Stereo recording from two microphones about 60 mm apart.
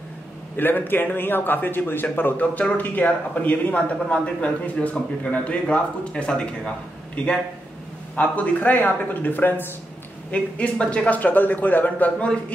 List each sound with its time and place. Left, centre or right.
0.6 s speech: left; by 6.7 s centre
8.2 s a man's voice: left
10.3 s a man's voice: centre